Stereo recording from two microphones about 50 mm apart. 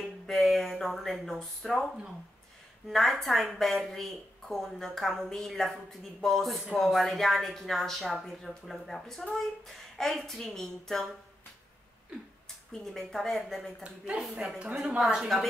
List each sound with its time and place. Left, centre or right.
0.3 s speech: centre
2.9 s a woman's voice: centre
12.9 s speech: centre
13.8 s a woman's voice: right